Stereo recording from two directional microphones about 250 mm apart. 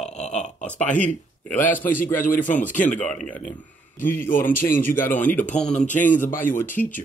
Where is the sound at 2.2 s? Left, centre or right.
Left.